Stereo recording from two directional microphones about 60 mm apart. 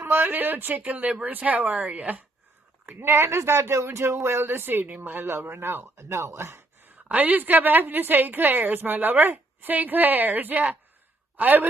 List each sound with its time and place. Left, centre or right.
0.0 s a woman's voice: right
3.0 s a woman's voice: right
5.9 s speech: right
7.1 s a woman's voice: right